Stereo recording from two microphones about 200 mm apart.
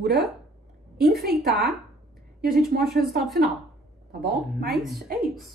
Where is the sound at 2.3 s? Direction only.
50° right (ahead or behind).